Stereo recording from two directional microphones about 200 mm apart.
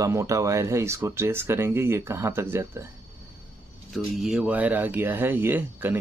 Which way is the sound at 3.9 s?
Centre (ahead or behind).